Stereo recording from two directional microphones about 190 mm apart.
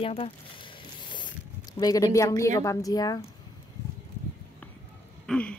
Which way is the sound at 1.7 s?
20° left (ahead or behind).